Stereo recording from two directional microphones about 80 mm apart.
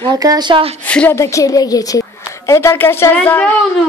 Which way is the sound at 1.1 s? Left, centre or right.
Left.